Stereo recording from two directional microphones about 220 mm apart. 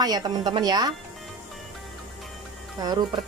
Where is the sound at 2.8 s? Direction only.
15° right (ahead or behind).